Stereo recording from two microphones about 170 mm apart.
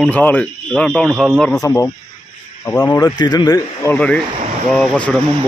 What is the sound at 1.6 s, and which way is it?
Speech, 20° left (ahead or behind).